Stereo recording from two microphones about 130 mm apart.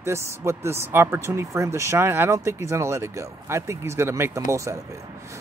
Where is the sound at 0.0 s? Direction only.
20° right (ahead or behind).